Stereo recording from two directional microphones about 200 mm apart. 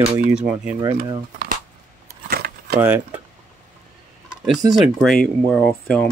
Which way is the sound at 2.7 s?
5° right (ahead or behind).